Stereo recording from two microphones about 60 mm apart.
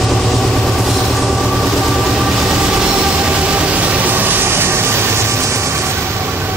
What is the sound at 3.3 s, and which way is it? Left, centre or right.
Train, centre.